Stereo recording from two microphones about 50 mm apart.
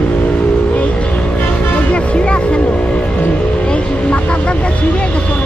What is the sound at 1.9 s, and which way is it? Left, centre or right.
Music, left.